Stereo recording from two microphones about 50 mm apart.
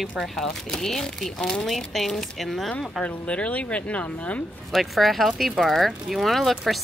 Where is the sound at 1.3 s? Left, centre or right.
Centre.